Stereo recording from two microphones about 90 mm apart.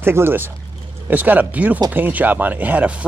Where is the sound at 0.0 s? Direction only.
25° right (ahead or behind).